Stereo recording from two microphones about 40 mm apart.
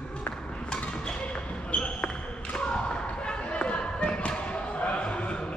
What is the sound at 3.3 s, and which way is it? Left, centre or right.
Basketball bounce, left.